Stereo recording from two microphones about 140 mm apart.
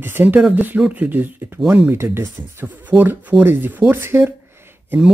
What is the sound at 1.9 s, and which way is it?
Speech, 15° right (ahead or behind).